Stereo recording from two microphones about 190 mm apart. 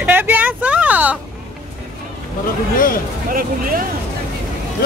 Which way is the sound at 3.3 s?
45° right (ahead or behind).